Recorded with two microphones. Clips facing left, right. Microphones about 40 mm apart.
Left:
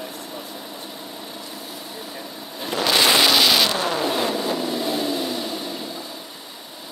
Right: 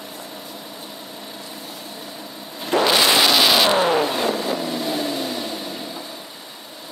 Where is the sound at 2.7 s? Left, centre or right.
Right.